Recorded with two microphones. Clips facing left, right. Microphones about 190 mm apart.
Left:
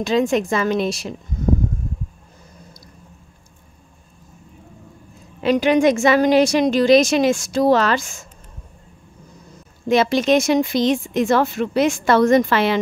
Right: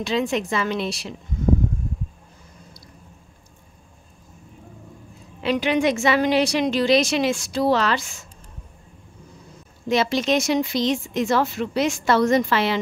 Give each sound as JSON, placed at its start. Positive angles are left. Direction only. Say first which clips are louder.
{"t": 0.0, "sound": "a woman's voice", "louder": "left 5 dB", "side_deg": 45}
{"t": 5.4, "sound": "a woman's voice", "louder": "left 5 dB", "side_deg": 45}
{"t": 9.8, "sound": "a woman's voice", "louder": "left 5 dB", "side_deg": 50}